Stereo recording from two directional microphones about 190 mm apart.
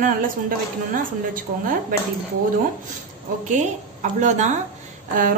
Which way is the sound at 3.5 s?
40° right (ahead or behind).